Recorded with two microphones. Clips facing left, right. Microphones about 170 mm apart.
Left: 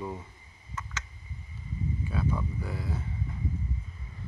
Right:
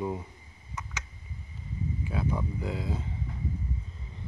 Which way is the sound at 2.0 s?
15° right (ahead or behind).